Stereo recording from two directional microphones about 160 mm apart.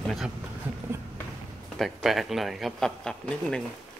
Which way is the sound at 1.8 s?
Centre (ahead or behind).